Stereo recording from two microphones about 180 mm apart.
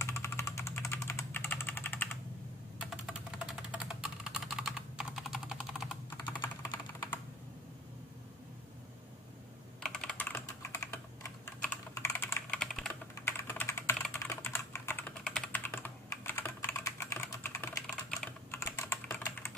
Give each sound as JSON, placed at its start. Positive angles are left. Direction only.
{"t": 0.0, "sound": "typing", "side_deg": 15}
{"t": 2.8, "sound": "typing", "side_deg": -5}
{"t": 9.8, "sound": "typing", "side_deg": 5}
{"t": 11.9, "sound": "typing", "side_deg": 15}
{"t": 12.5, "sound": "typing", "side_deg": 5}
{"t": 14.0, "sound": "computer keyboard", "side_deg": 5}
{"t": 14.3, "sound": "typing", "side_deg": 15}